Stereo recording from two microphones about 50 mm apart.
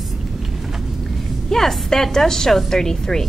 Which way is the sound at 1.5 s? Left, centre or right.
Centre.